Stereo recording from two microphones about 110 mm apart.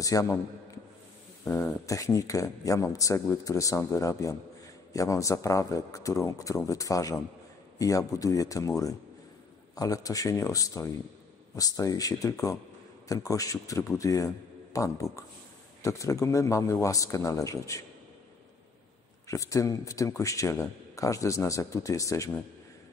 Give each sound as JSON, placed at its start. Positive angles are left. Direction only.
{"t": 0.0, "sound": "a man's voice", "side_deg": 30}
{"t": 1.4, "sound": "a man's voice", "side_deg": 25}
{"t": 19.2, "sound": "speech", "side_deg": 30}